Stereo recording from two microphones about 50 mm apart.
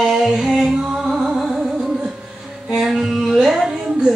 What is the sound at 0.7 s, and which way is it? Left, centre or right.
Music, centre.